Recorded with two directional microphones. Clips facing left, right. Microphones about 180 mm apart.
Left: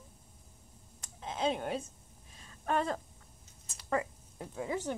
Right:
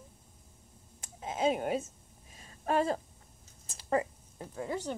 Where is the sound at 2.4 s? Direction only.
35° right (ahead or behind).